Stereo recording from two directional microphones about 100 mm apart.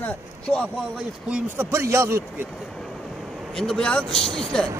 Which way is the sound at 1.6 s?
30° right (ahead or behind).